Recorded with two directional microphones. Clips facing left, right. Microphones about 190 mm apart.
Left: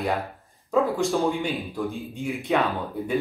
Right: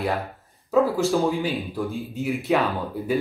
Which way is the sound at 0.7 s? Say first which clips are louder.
Right 2 dB; centre (ahead or behind).